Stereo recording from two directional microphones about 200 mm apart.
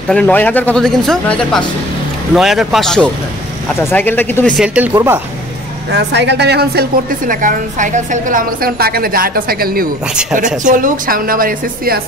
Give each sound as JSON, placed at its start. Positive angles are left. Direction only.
{"t": 0.1, "sound": "speech", "side_deg": 5}
{"t": 4.6, "sound": "speech", "side_deg": -10}
{"t": 5.9, "sound": "a woman's voice", "side_deg": -60}